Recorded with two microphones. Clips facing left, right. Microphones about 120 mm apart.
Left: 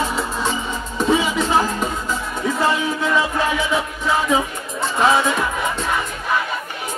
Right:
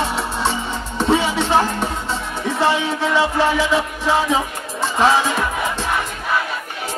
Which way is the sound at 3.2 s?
30° right (ahead or behind).